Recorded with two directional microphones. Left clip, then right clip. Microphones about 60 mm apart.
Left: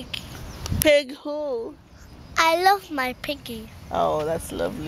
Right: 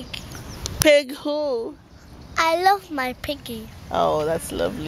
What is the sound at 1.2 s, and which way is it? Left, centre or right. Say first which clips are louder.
Speech: right 4 dB; right.